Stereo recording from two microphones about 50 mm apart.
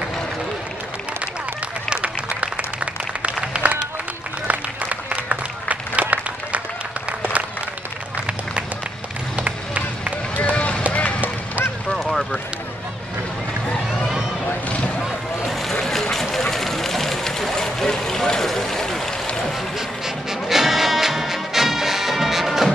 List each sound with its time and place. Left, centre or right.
1.9 s applause: right
5.1 s applause: right
9.4 s run: right
10.3 s run: left
11.9 s a sound: centre
15.4 s a sound: centre
20.2 s music: centre